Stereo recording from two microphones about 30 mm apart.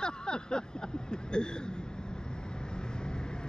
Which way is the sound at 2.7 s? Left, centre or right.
Left.